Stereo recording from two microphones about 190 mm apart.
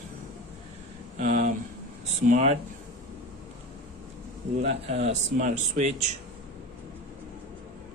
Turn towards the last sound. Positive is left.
turn(degrees=-40)  # may be behind; listen again after turning